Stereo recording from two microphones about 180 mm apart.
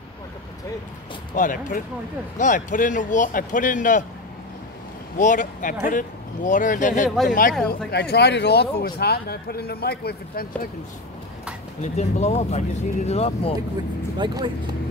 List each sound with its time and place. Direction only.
1.3 s speech: 45° left (ahead or behind)
5.1 s speech: 45° left (ahead or behind)
7.9 s speech: 65° left (ahead or behind)
11.8 s speech: 40° left (ahead or behind)
14.1 s speech: 25° right (ahead or behind)